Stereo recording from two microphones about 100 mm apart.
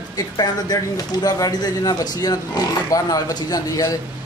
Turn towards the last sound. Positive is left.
turn(degrees=35)  # may be behind; listen again after turning